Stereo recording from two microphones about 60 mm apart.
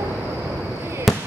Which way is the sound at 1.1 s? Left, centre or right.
Centre.